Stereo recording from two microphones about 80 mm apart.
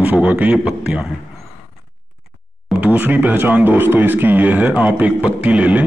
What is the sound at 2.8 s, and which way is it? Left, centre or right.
A man's voice, right.